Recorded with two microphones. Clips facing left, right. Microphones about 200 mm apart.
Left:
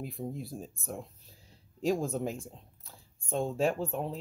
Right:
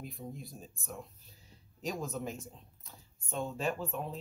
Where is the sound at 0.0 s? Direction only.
30° left (ahead or behind).